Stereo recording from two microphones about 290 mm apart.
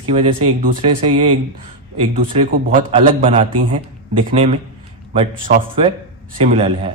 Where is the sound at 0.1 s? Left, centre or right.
Centre.